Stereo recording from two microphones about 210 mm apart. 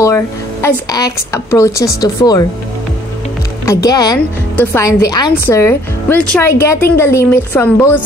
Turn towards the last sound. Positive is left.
turn(degrees=10)  # may be behind; listen again after turning